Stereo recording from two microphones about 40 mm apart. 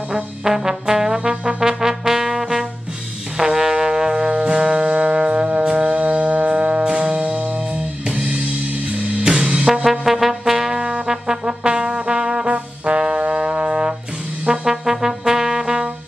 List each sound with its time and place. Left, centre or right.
0.4 s trombone: centre
1.3 s trombone: right
1.6 s brass instrument: centre
4.3 s music: right
8.9 s music: centre
9.8 s brass instrument: centre; by 12.5 s right
12.5 s trombone: right
14.4 s brass instrument: centre